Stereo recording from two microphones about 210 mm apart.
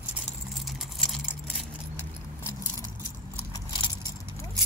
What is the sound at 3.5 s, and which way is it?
Keys jangling, 20° left (ahead or behind).